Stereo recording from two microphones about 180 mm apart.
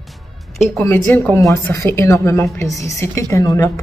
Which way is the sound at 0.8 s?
10° left (ahead or behind).